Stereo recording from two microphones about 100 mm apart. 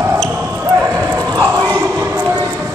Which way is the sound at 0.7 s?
20° right (ahead or behind).